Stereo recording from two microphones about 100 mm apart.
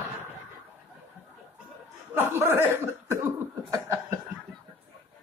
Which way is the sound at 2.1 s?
25° right (ahead or behind).